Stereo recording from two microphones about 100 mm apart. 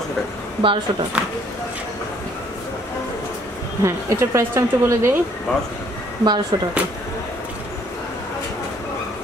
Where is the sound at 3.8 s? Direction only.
30° right (ahead or behind).